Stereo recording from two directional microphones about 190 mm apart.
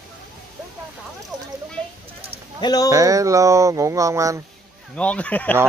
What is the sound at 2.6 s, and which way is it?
Speech, 20° left (ahead or behind).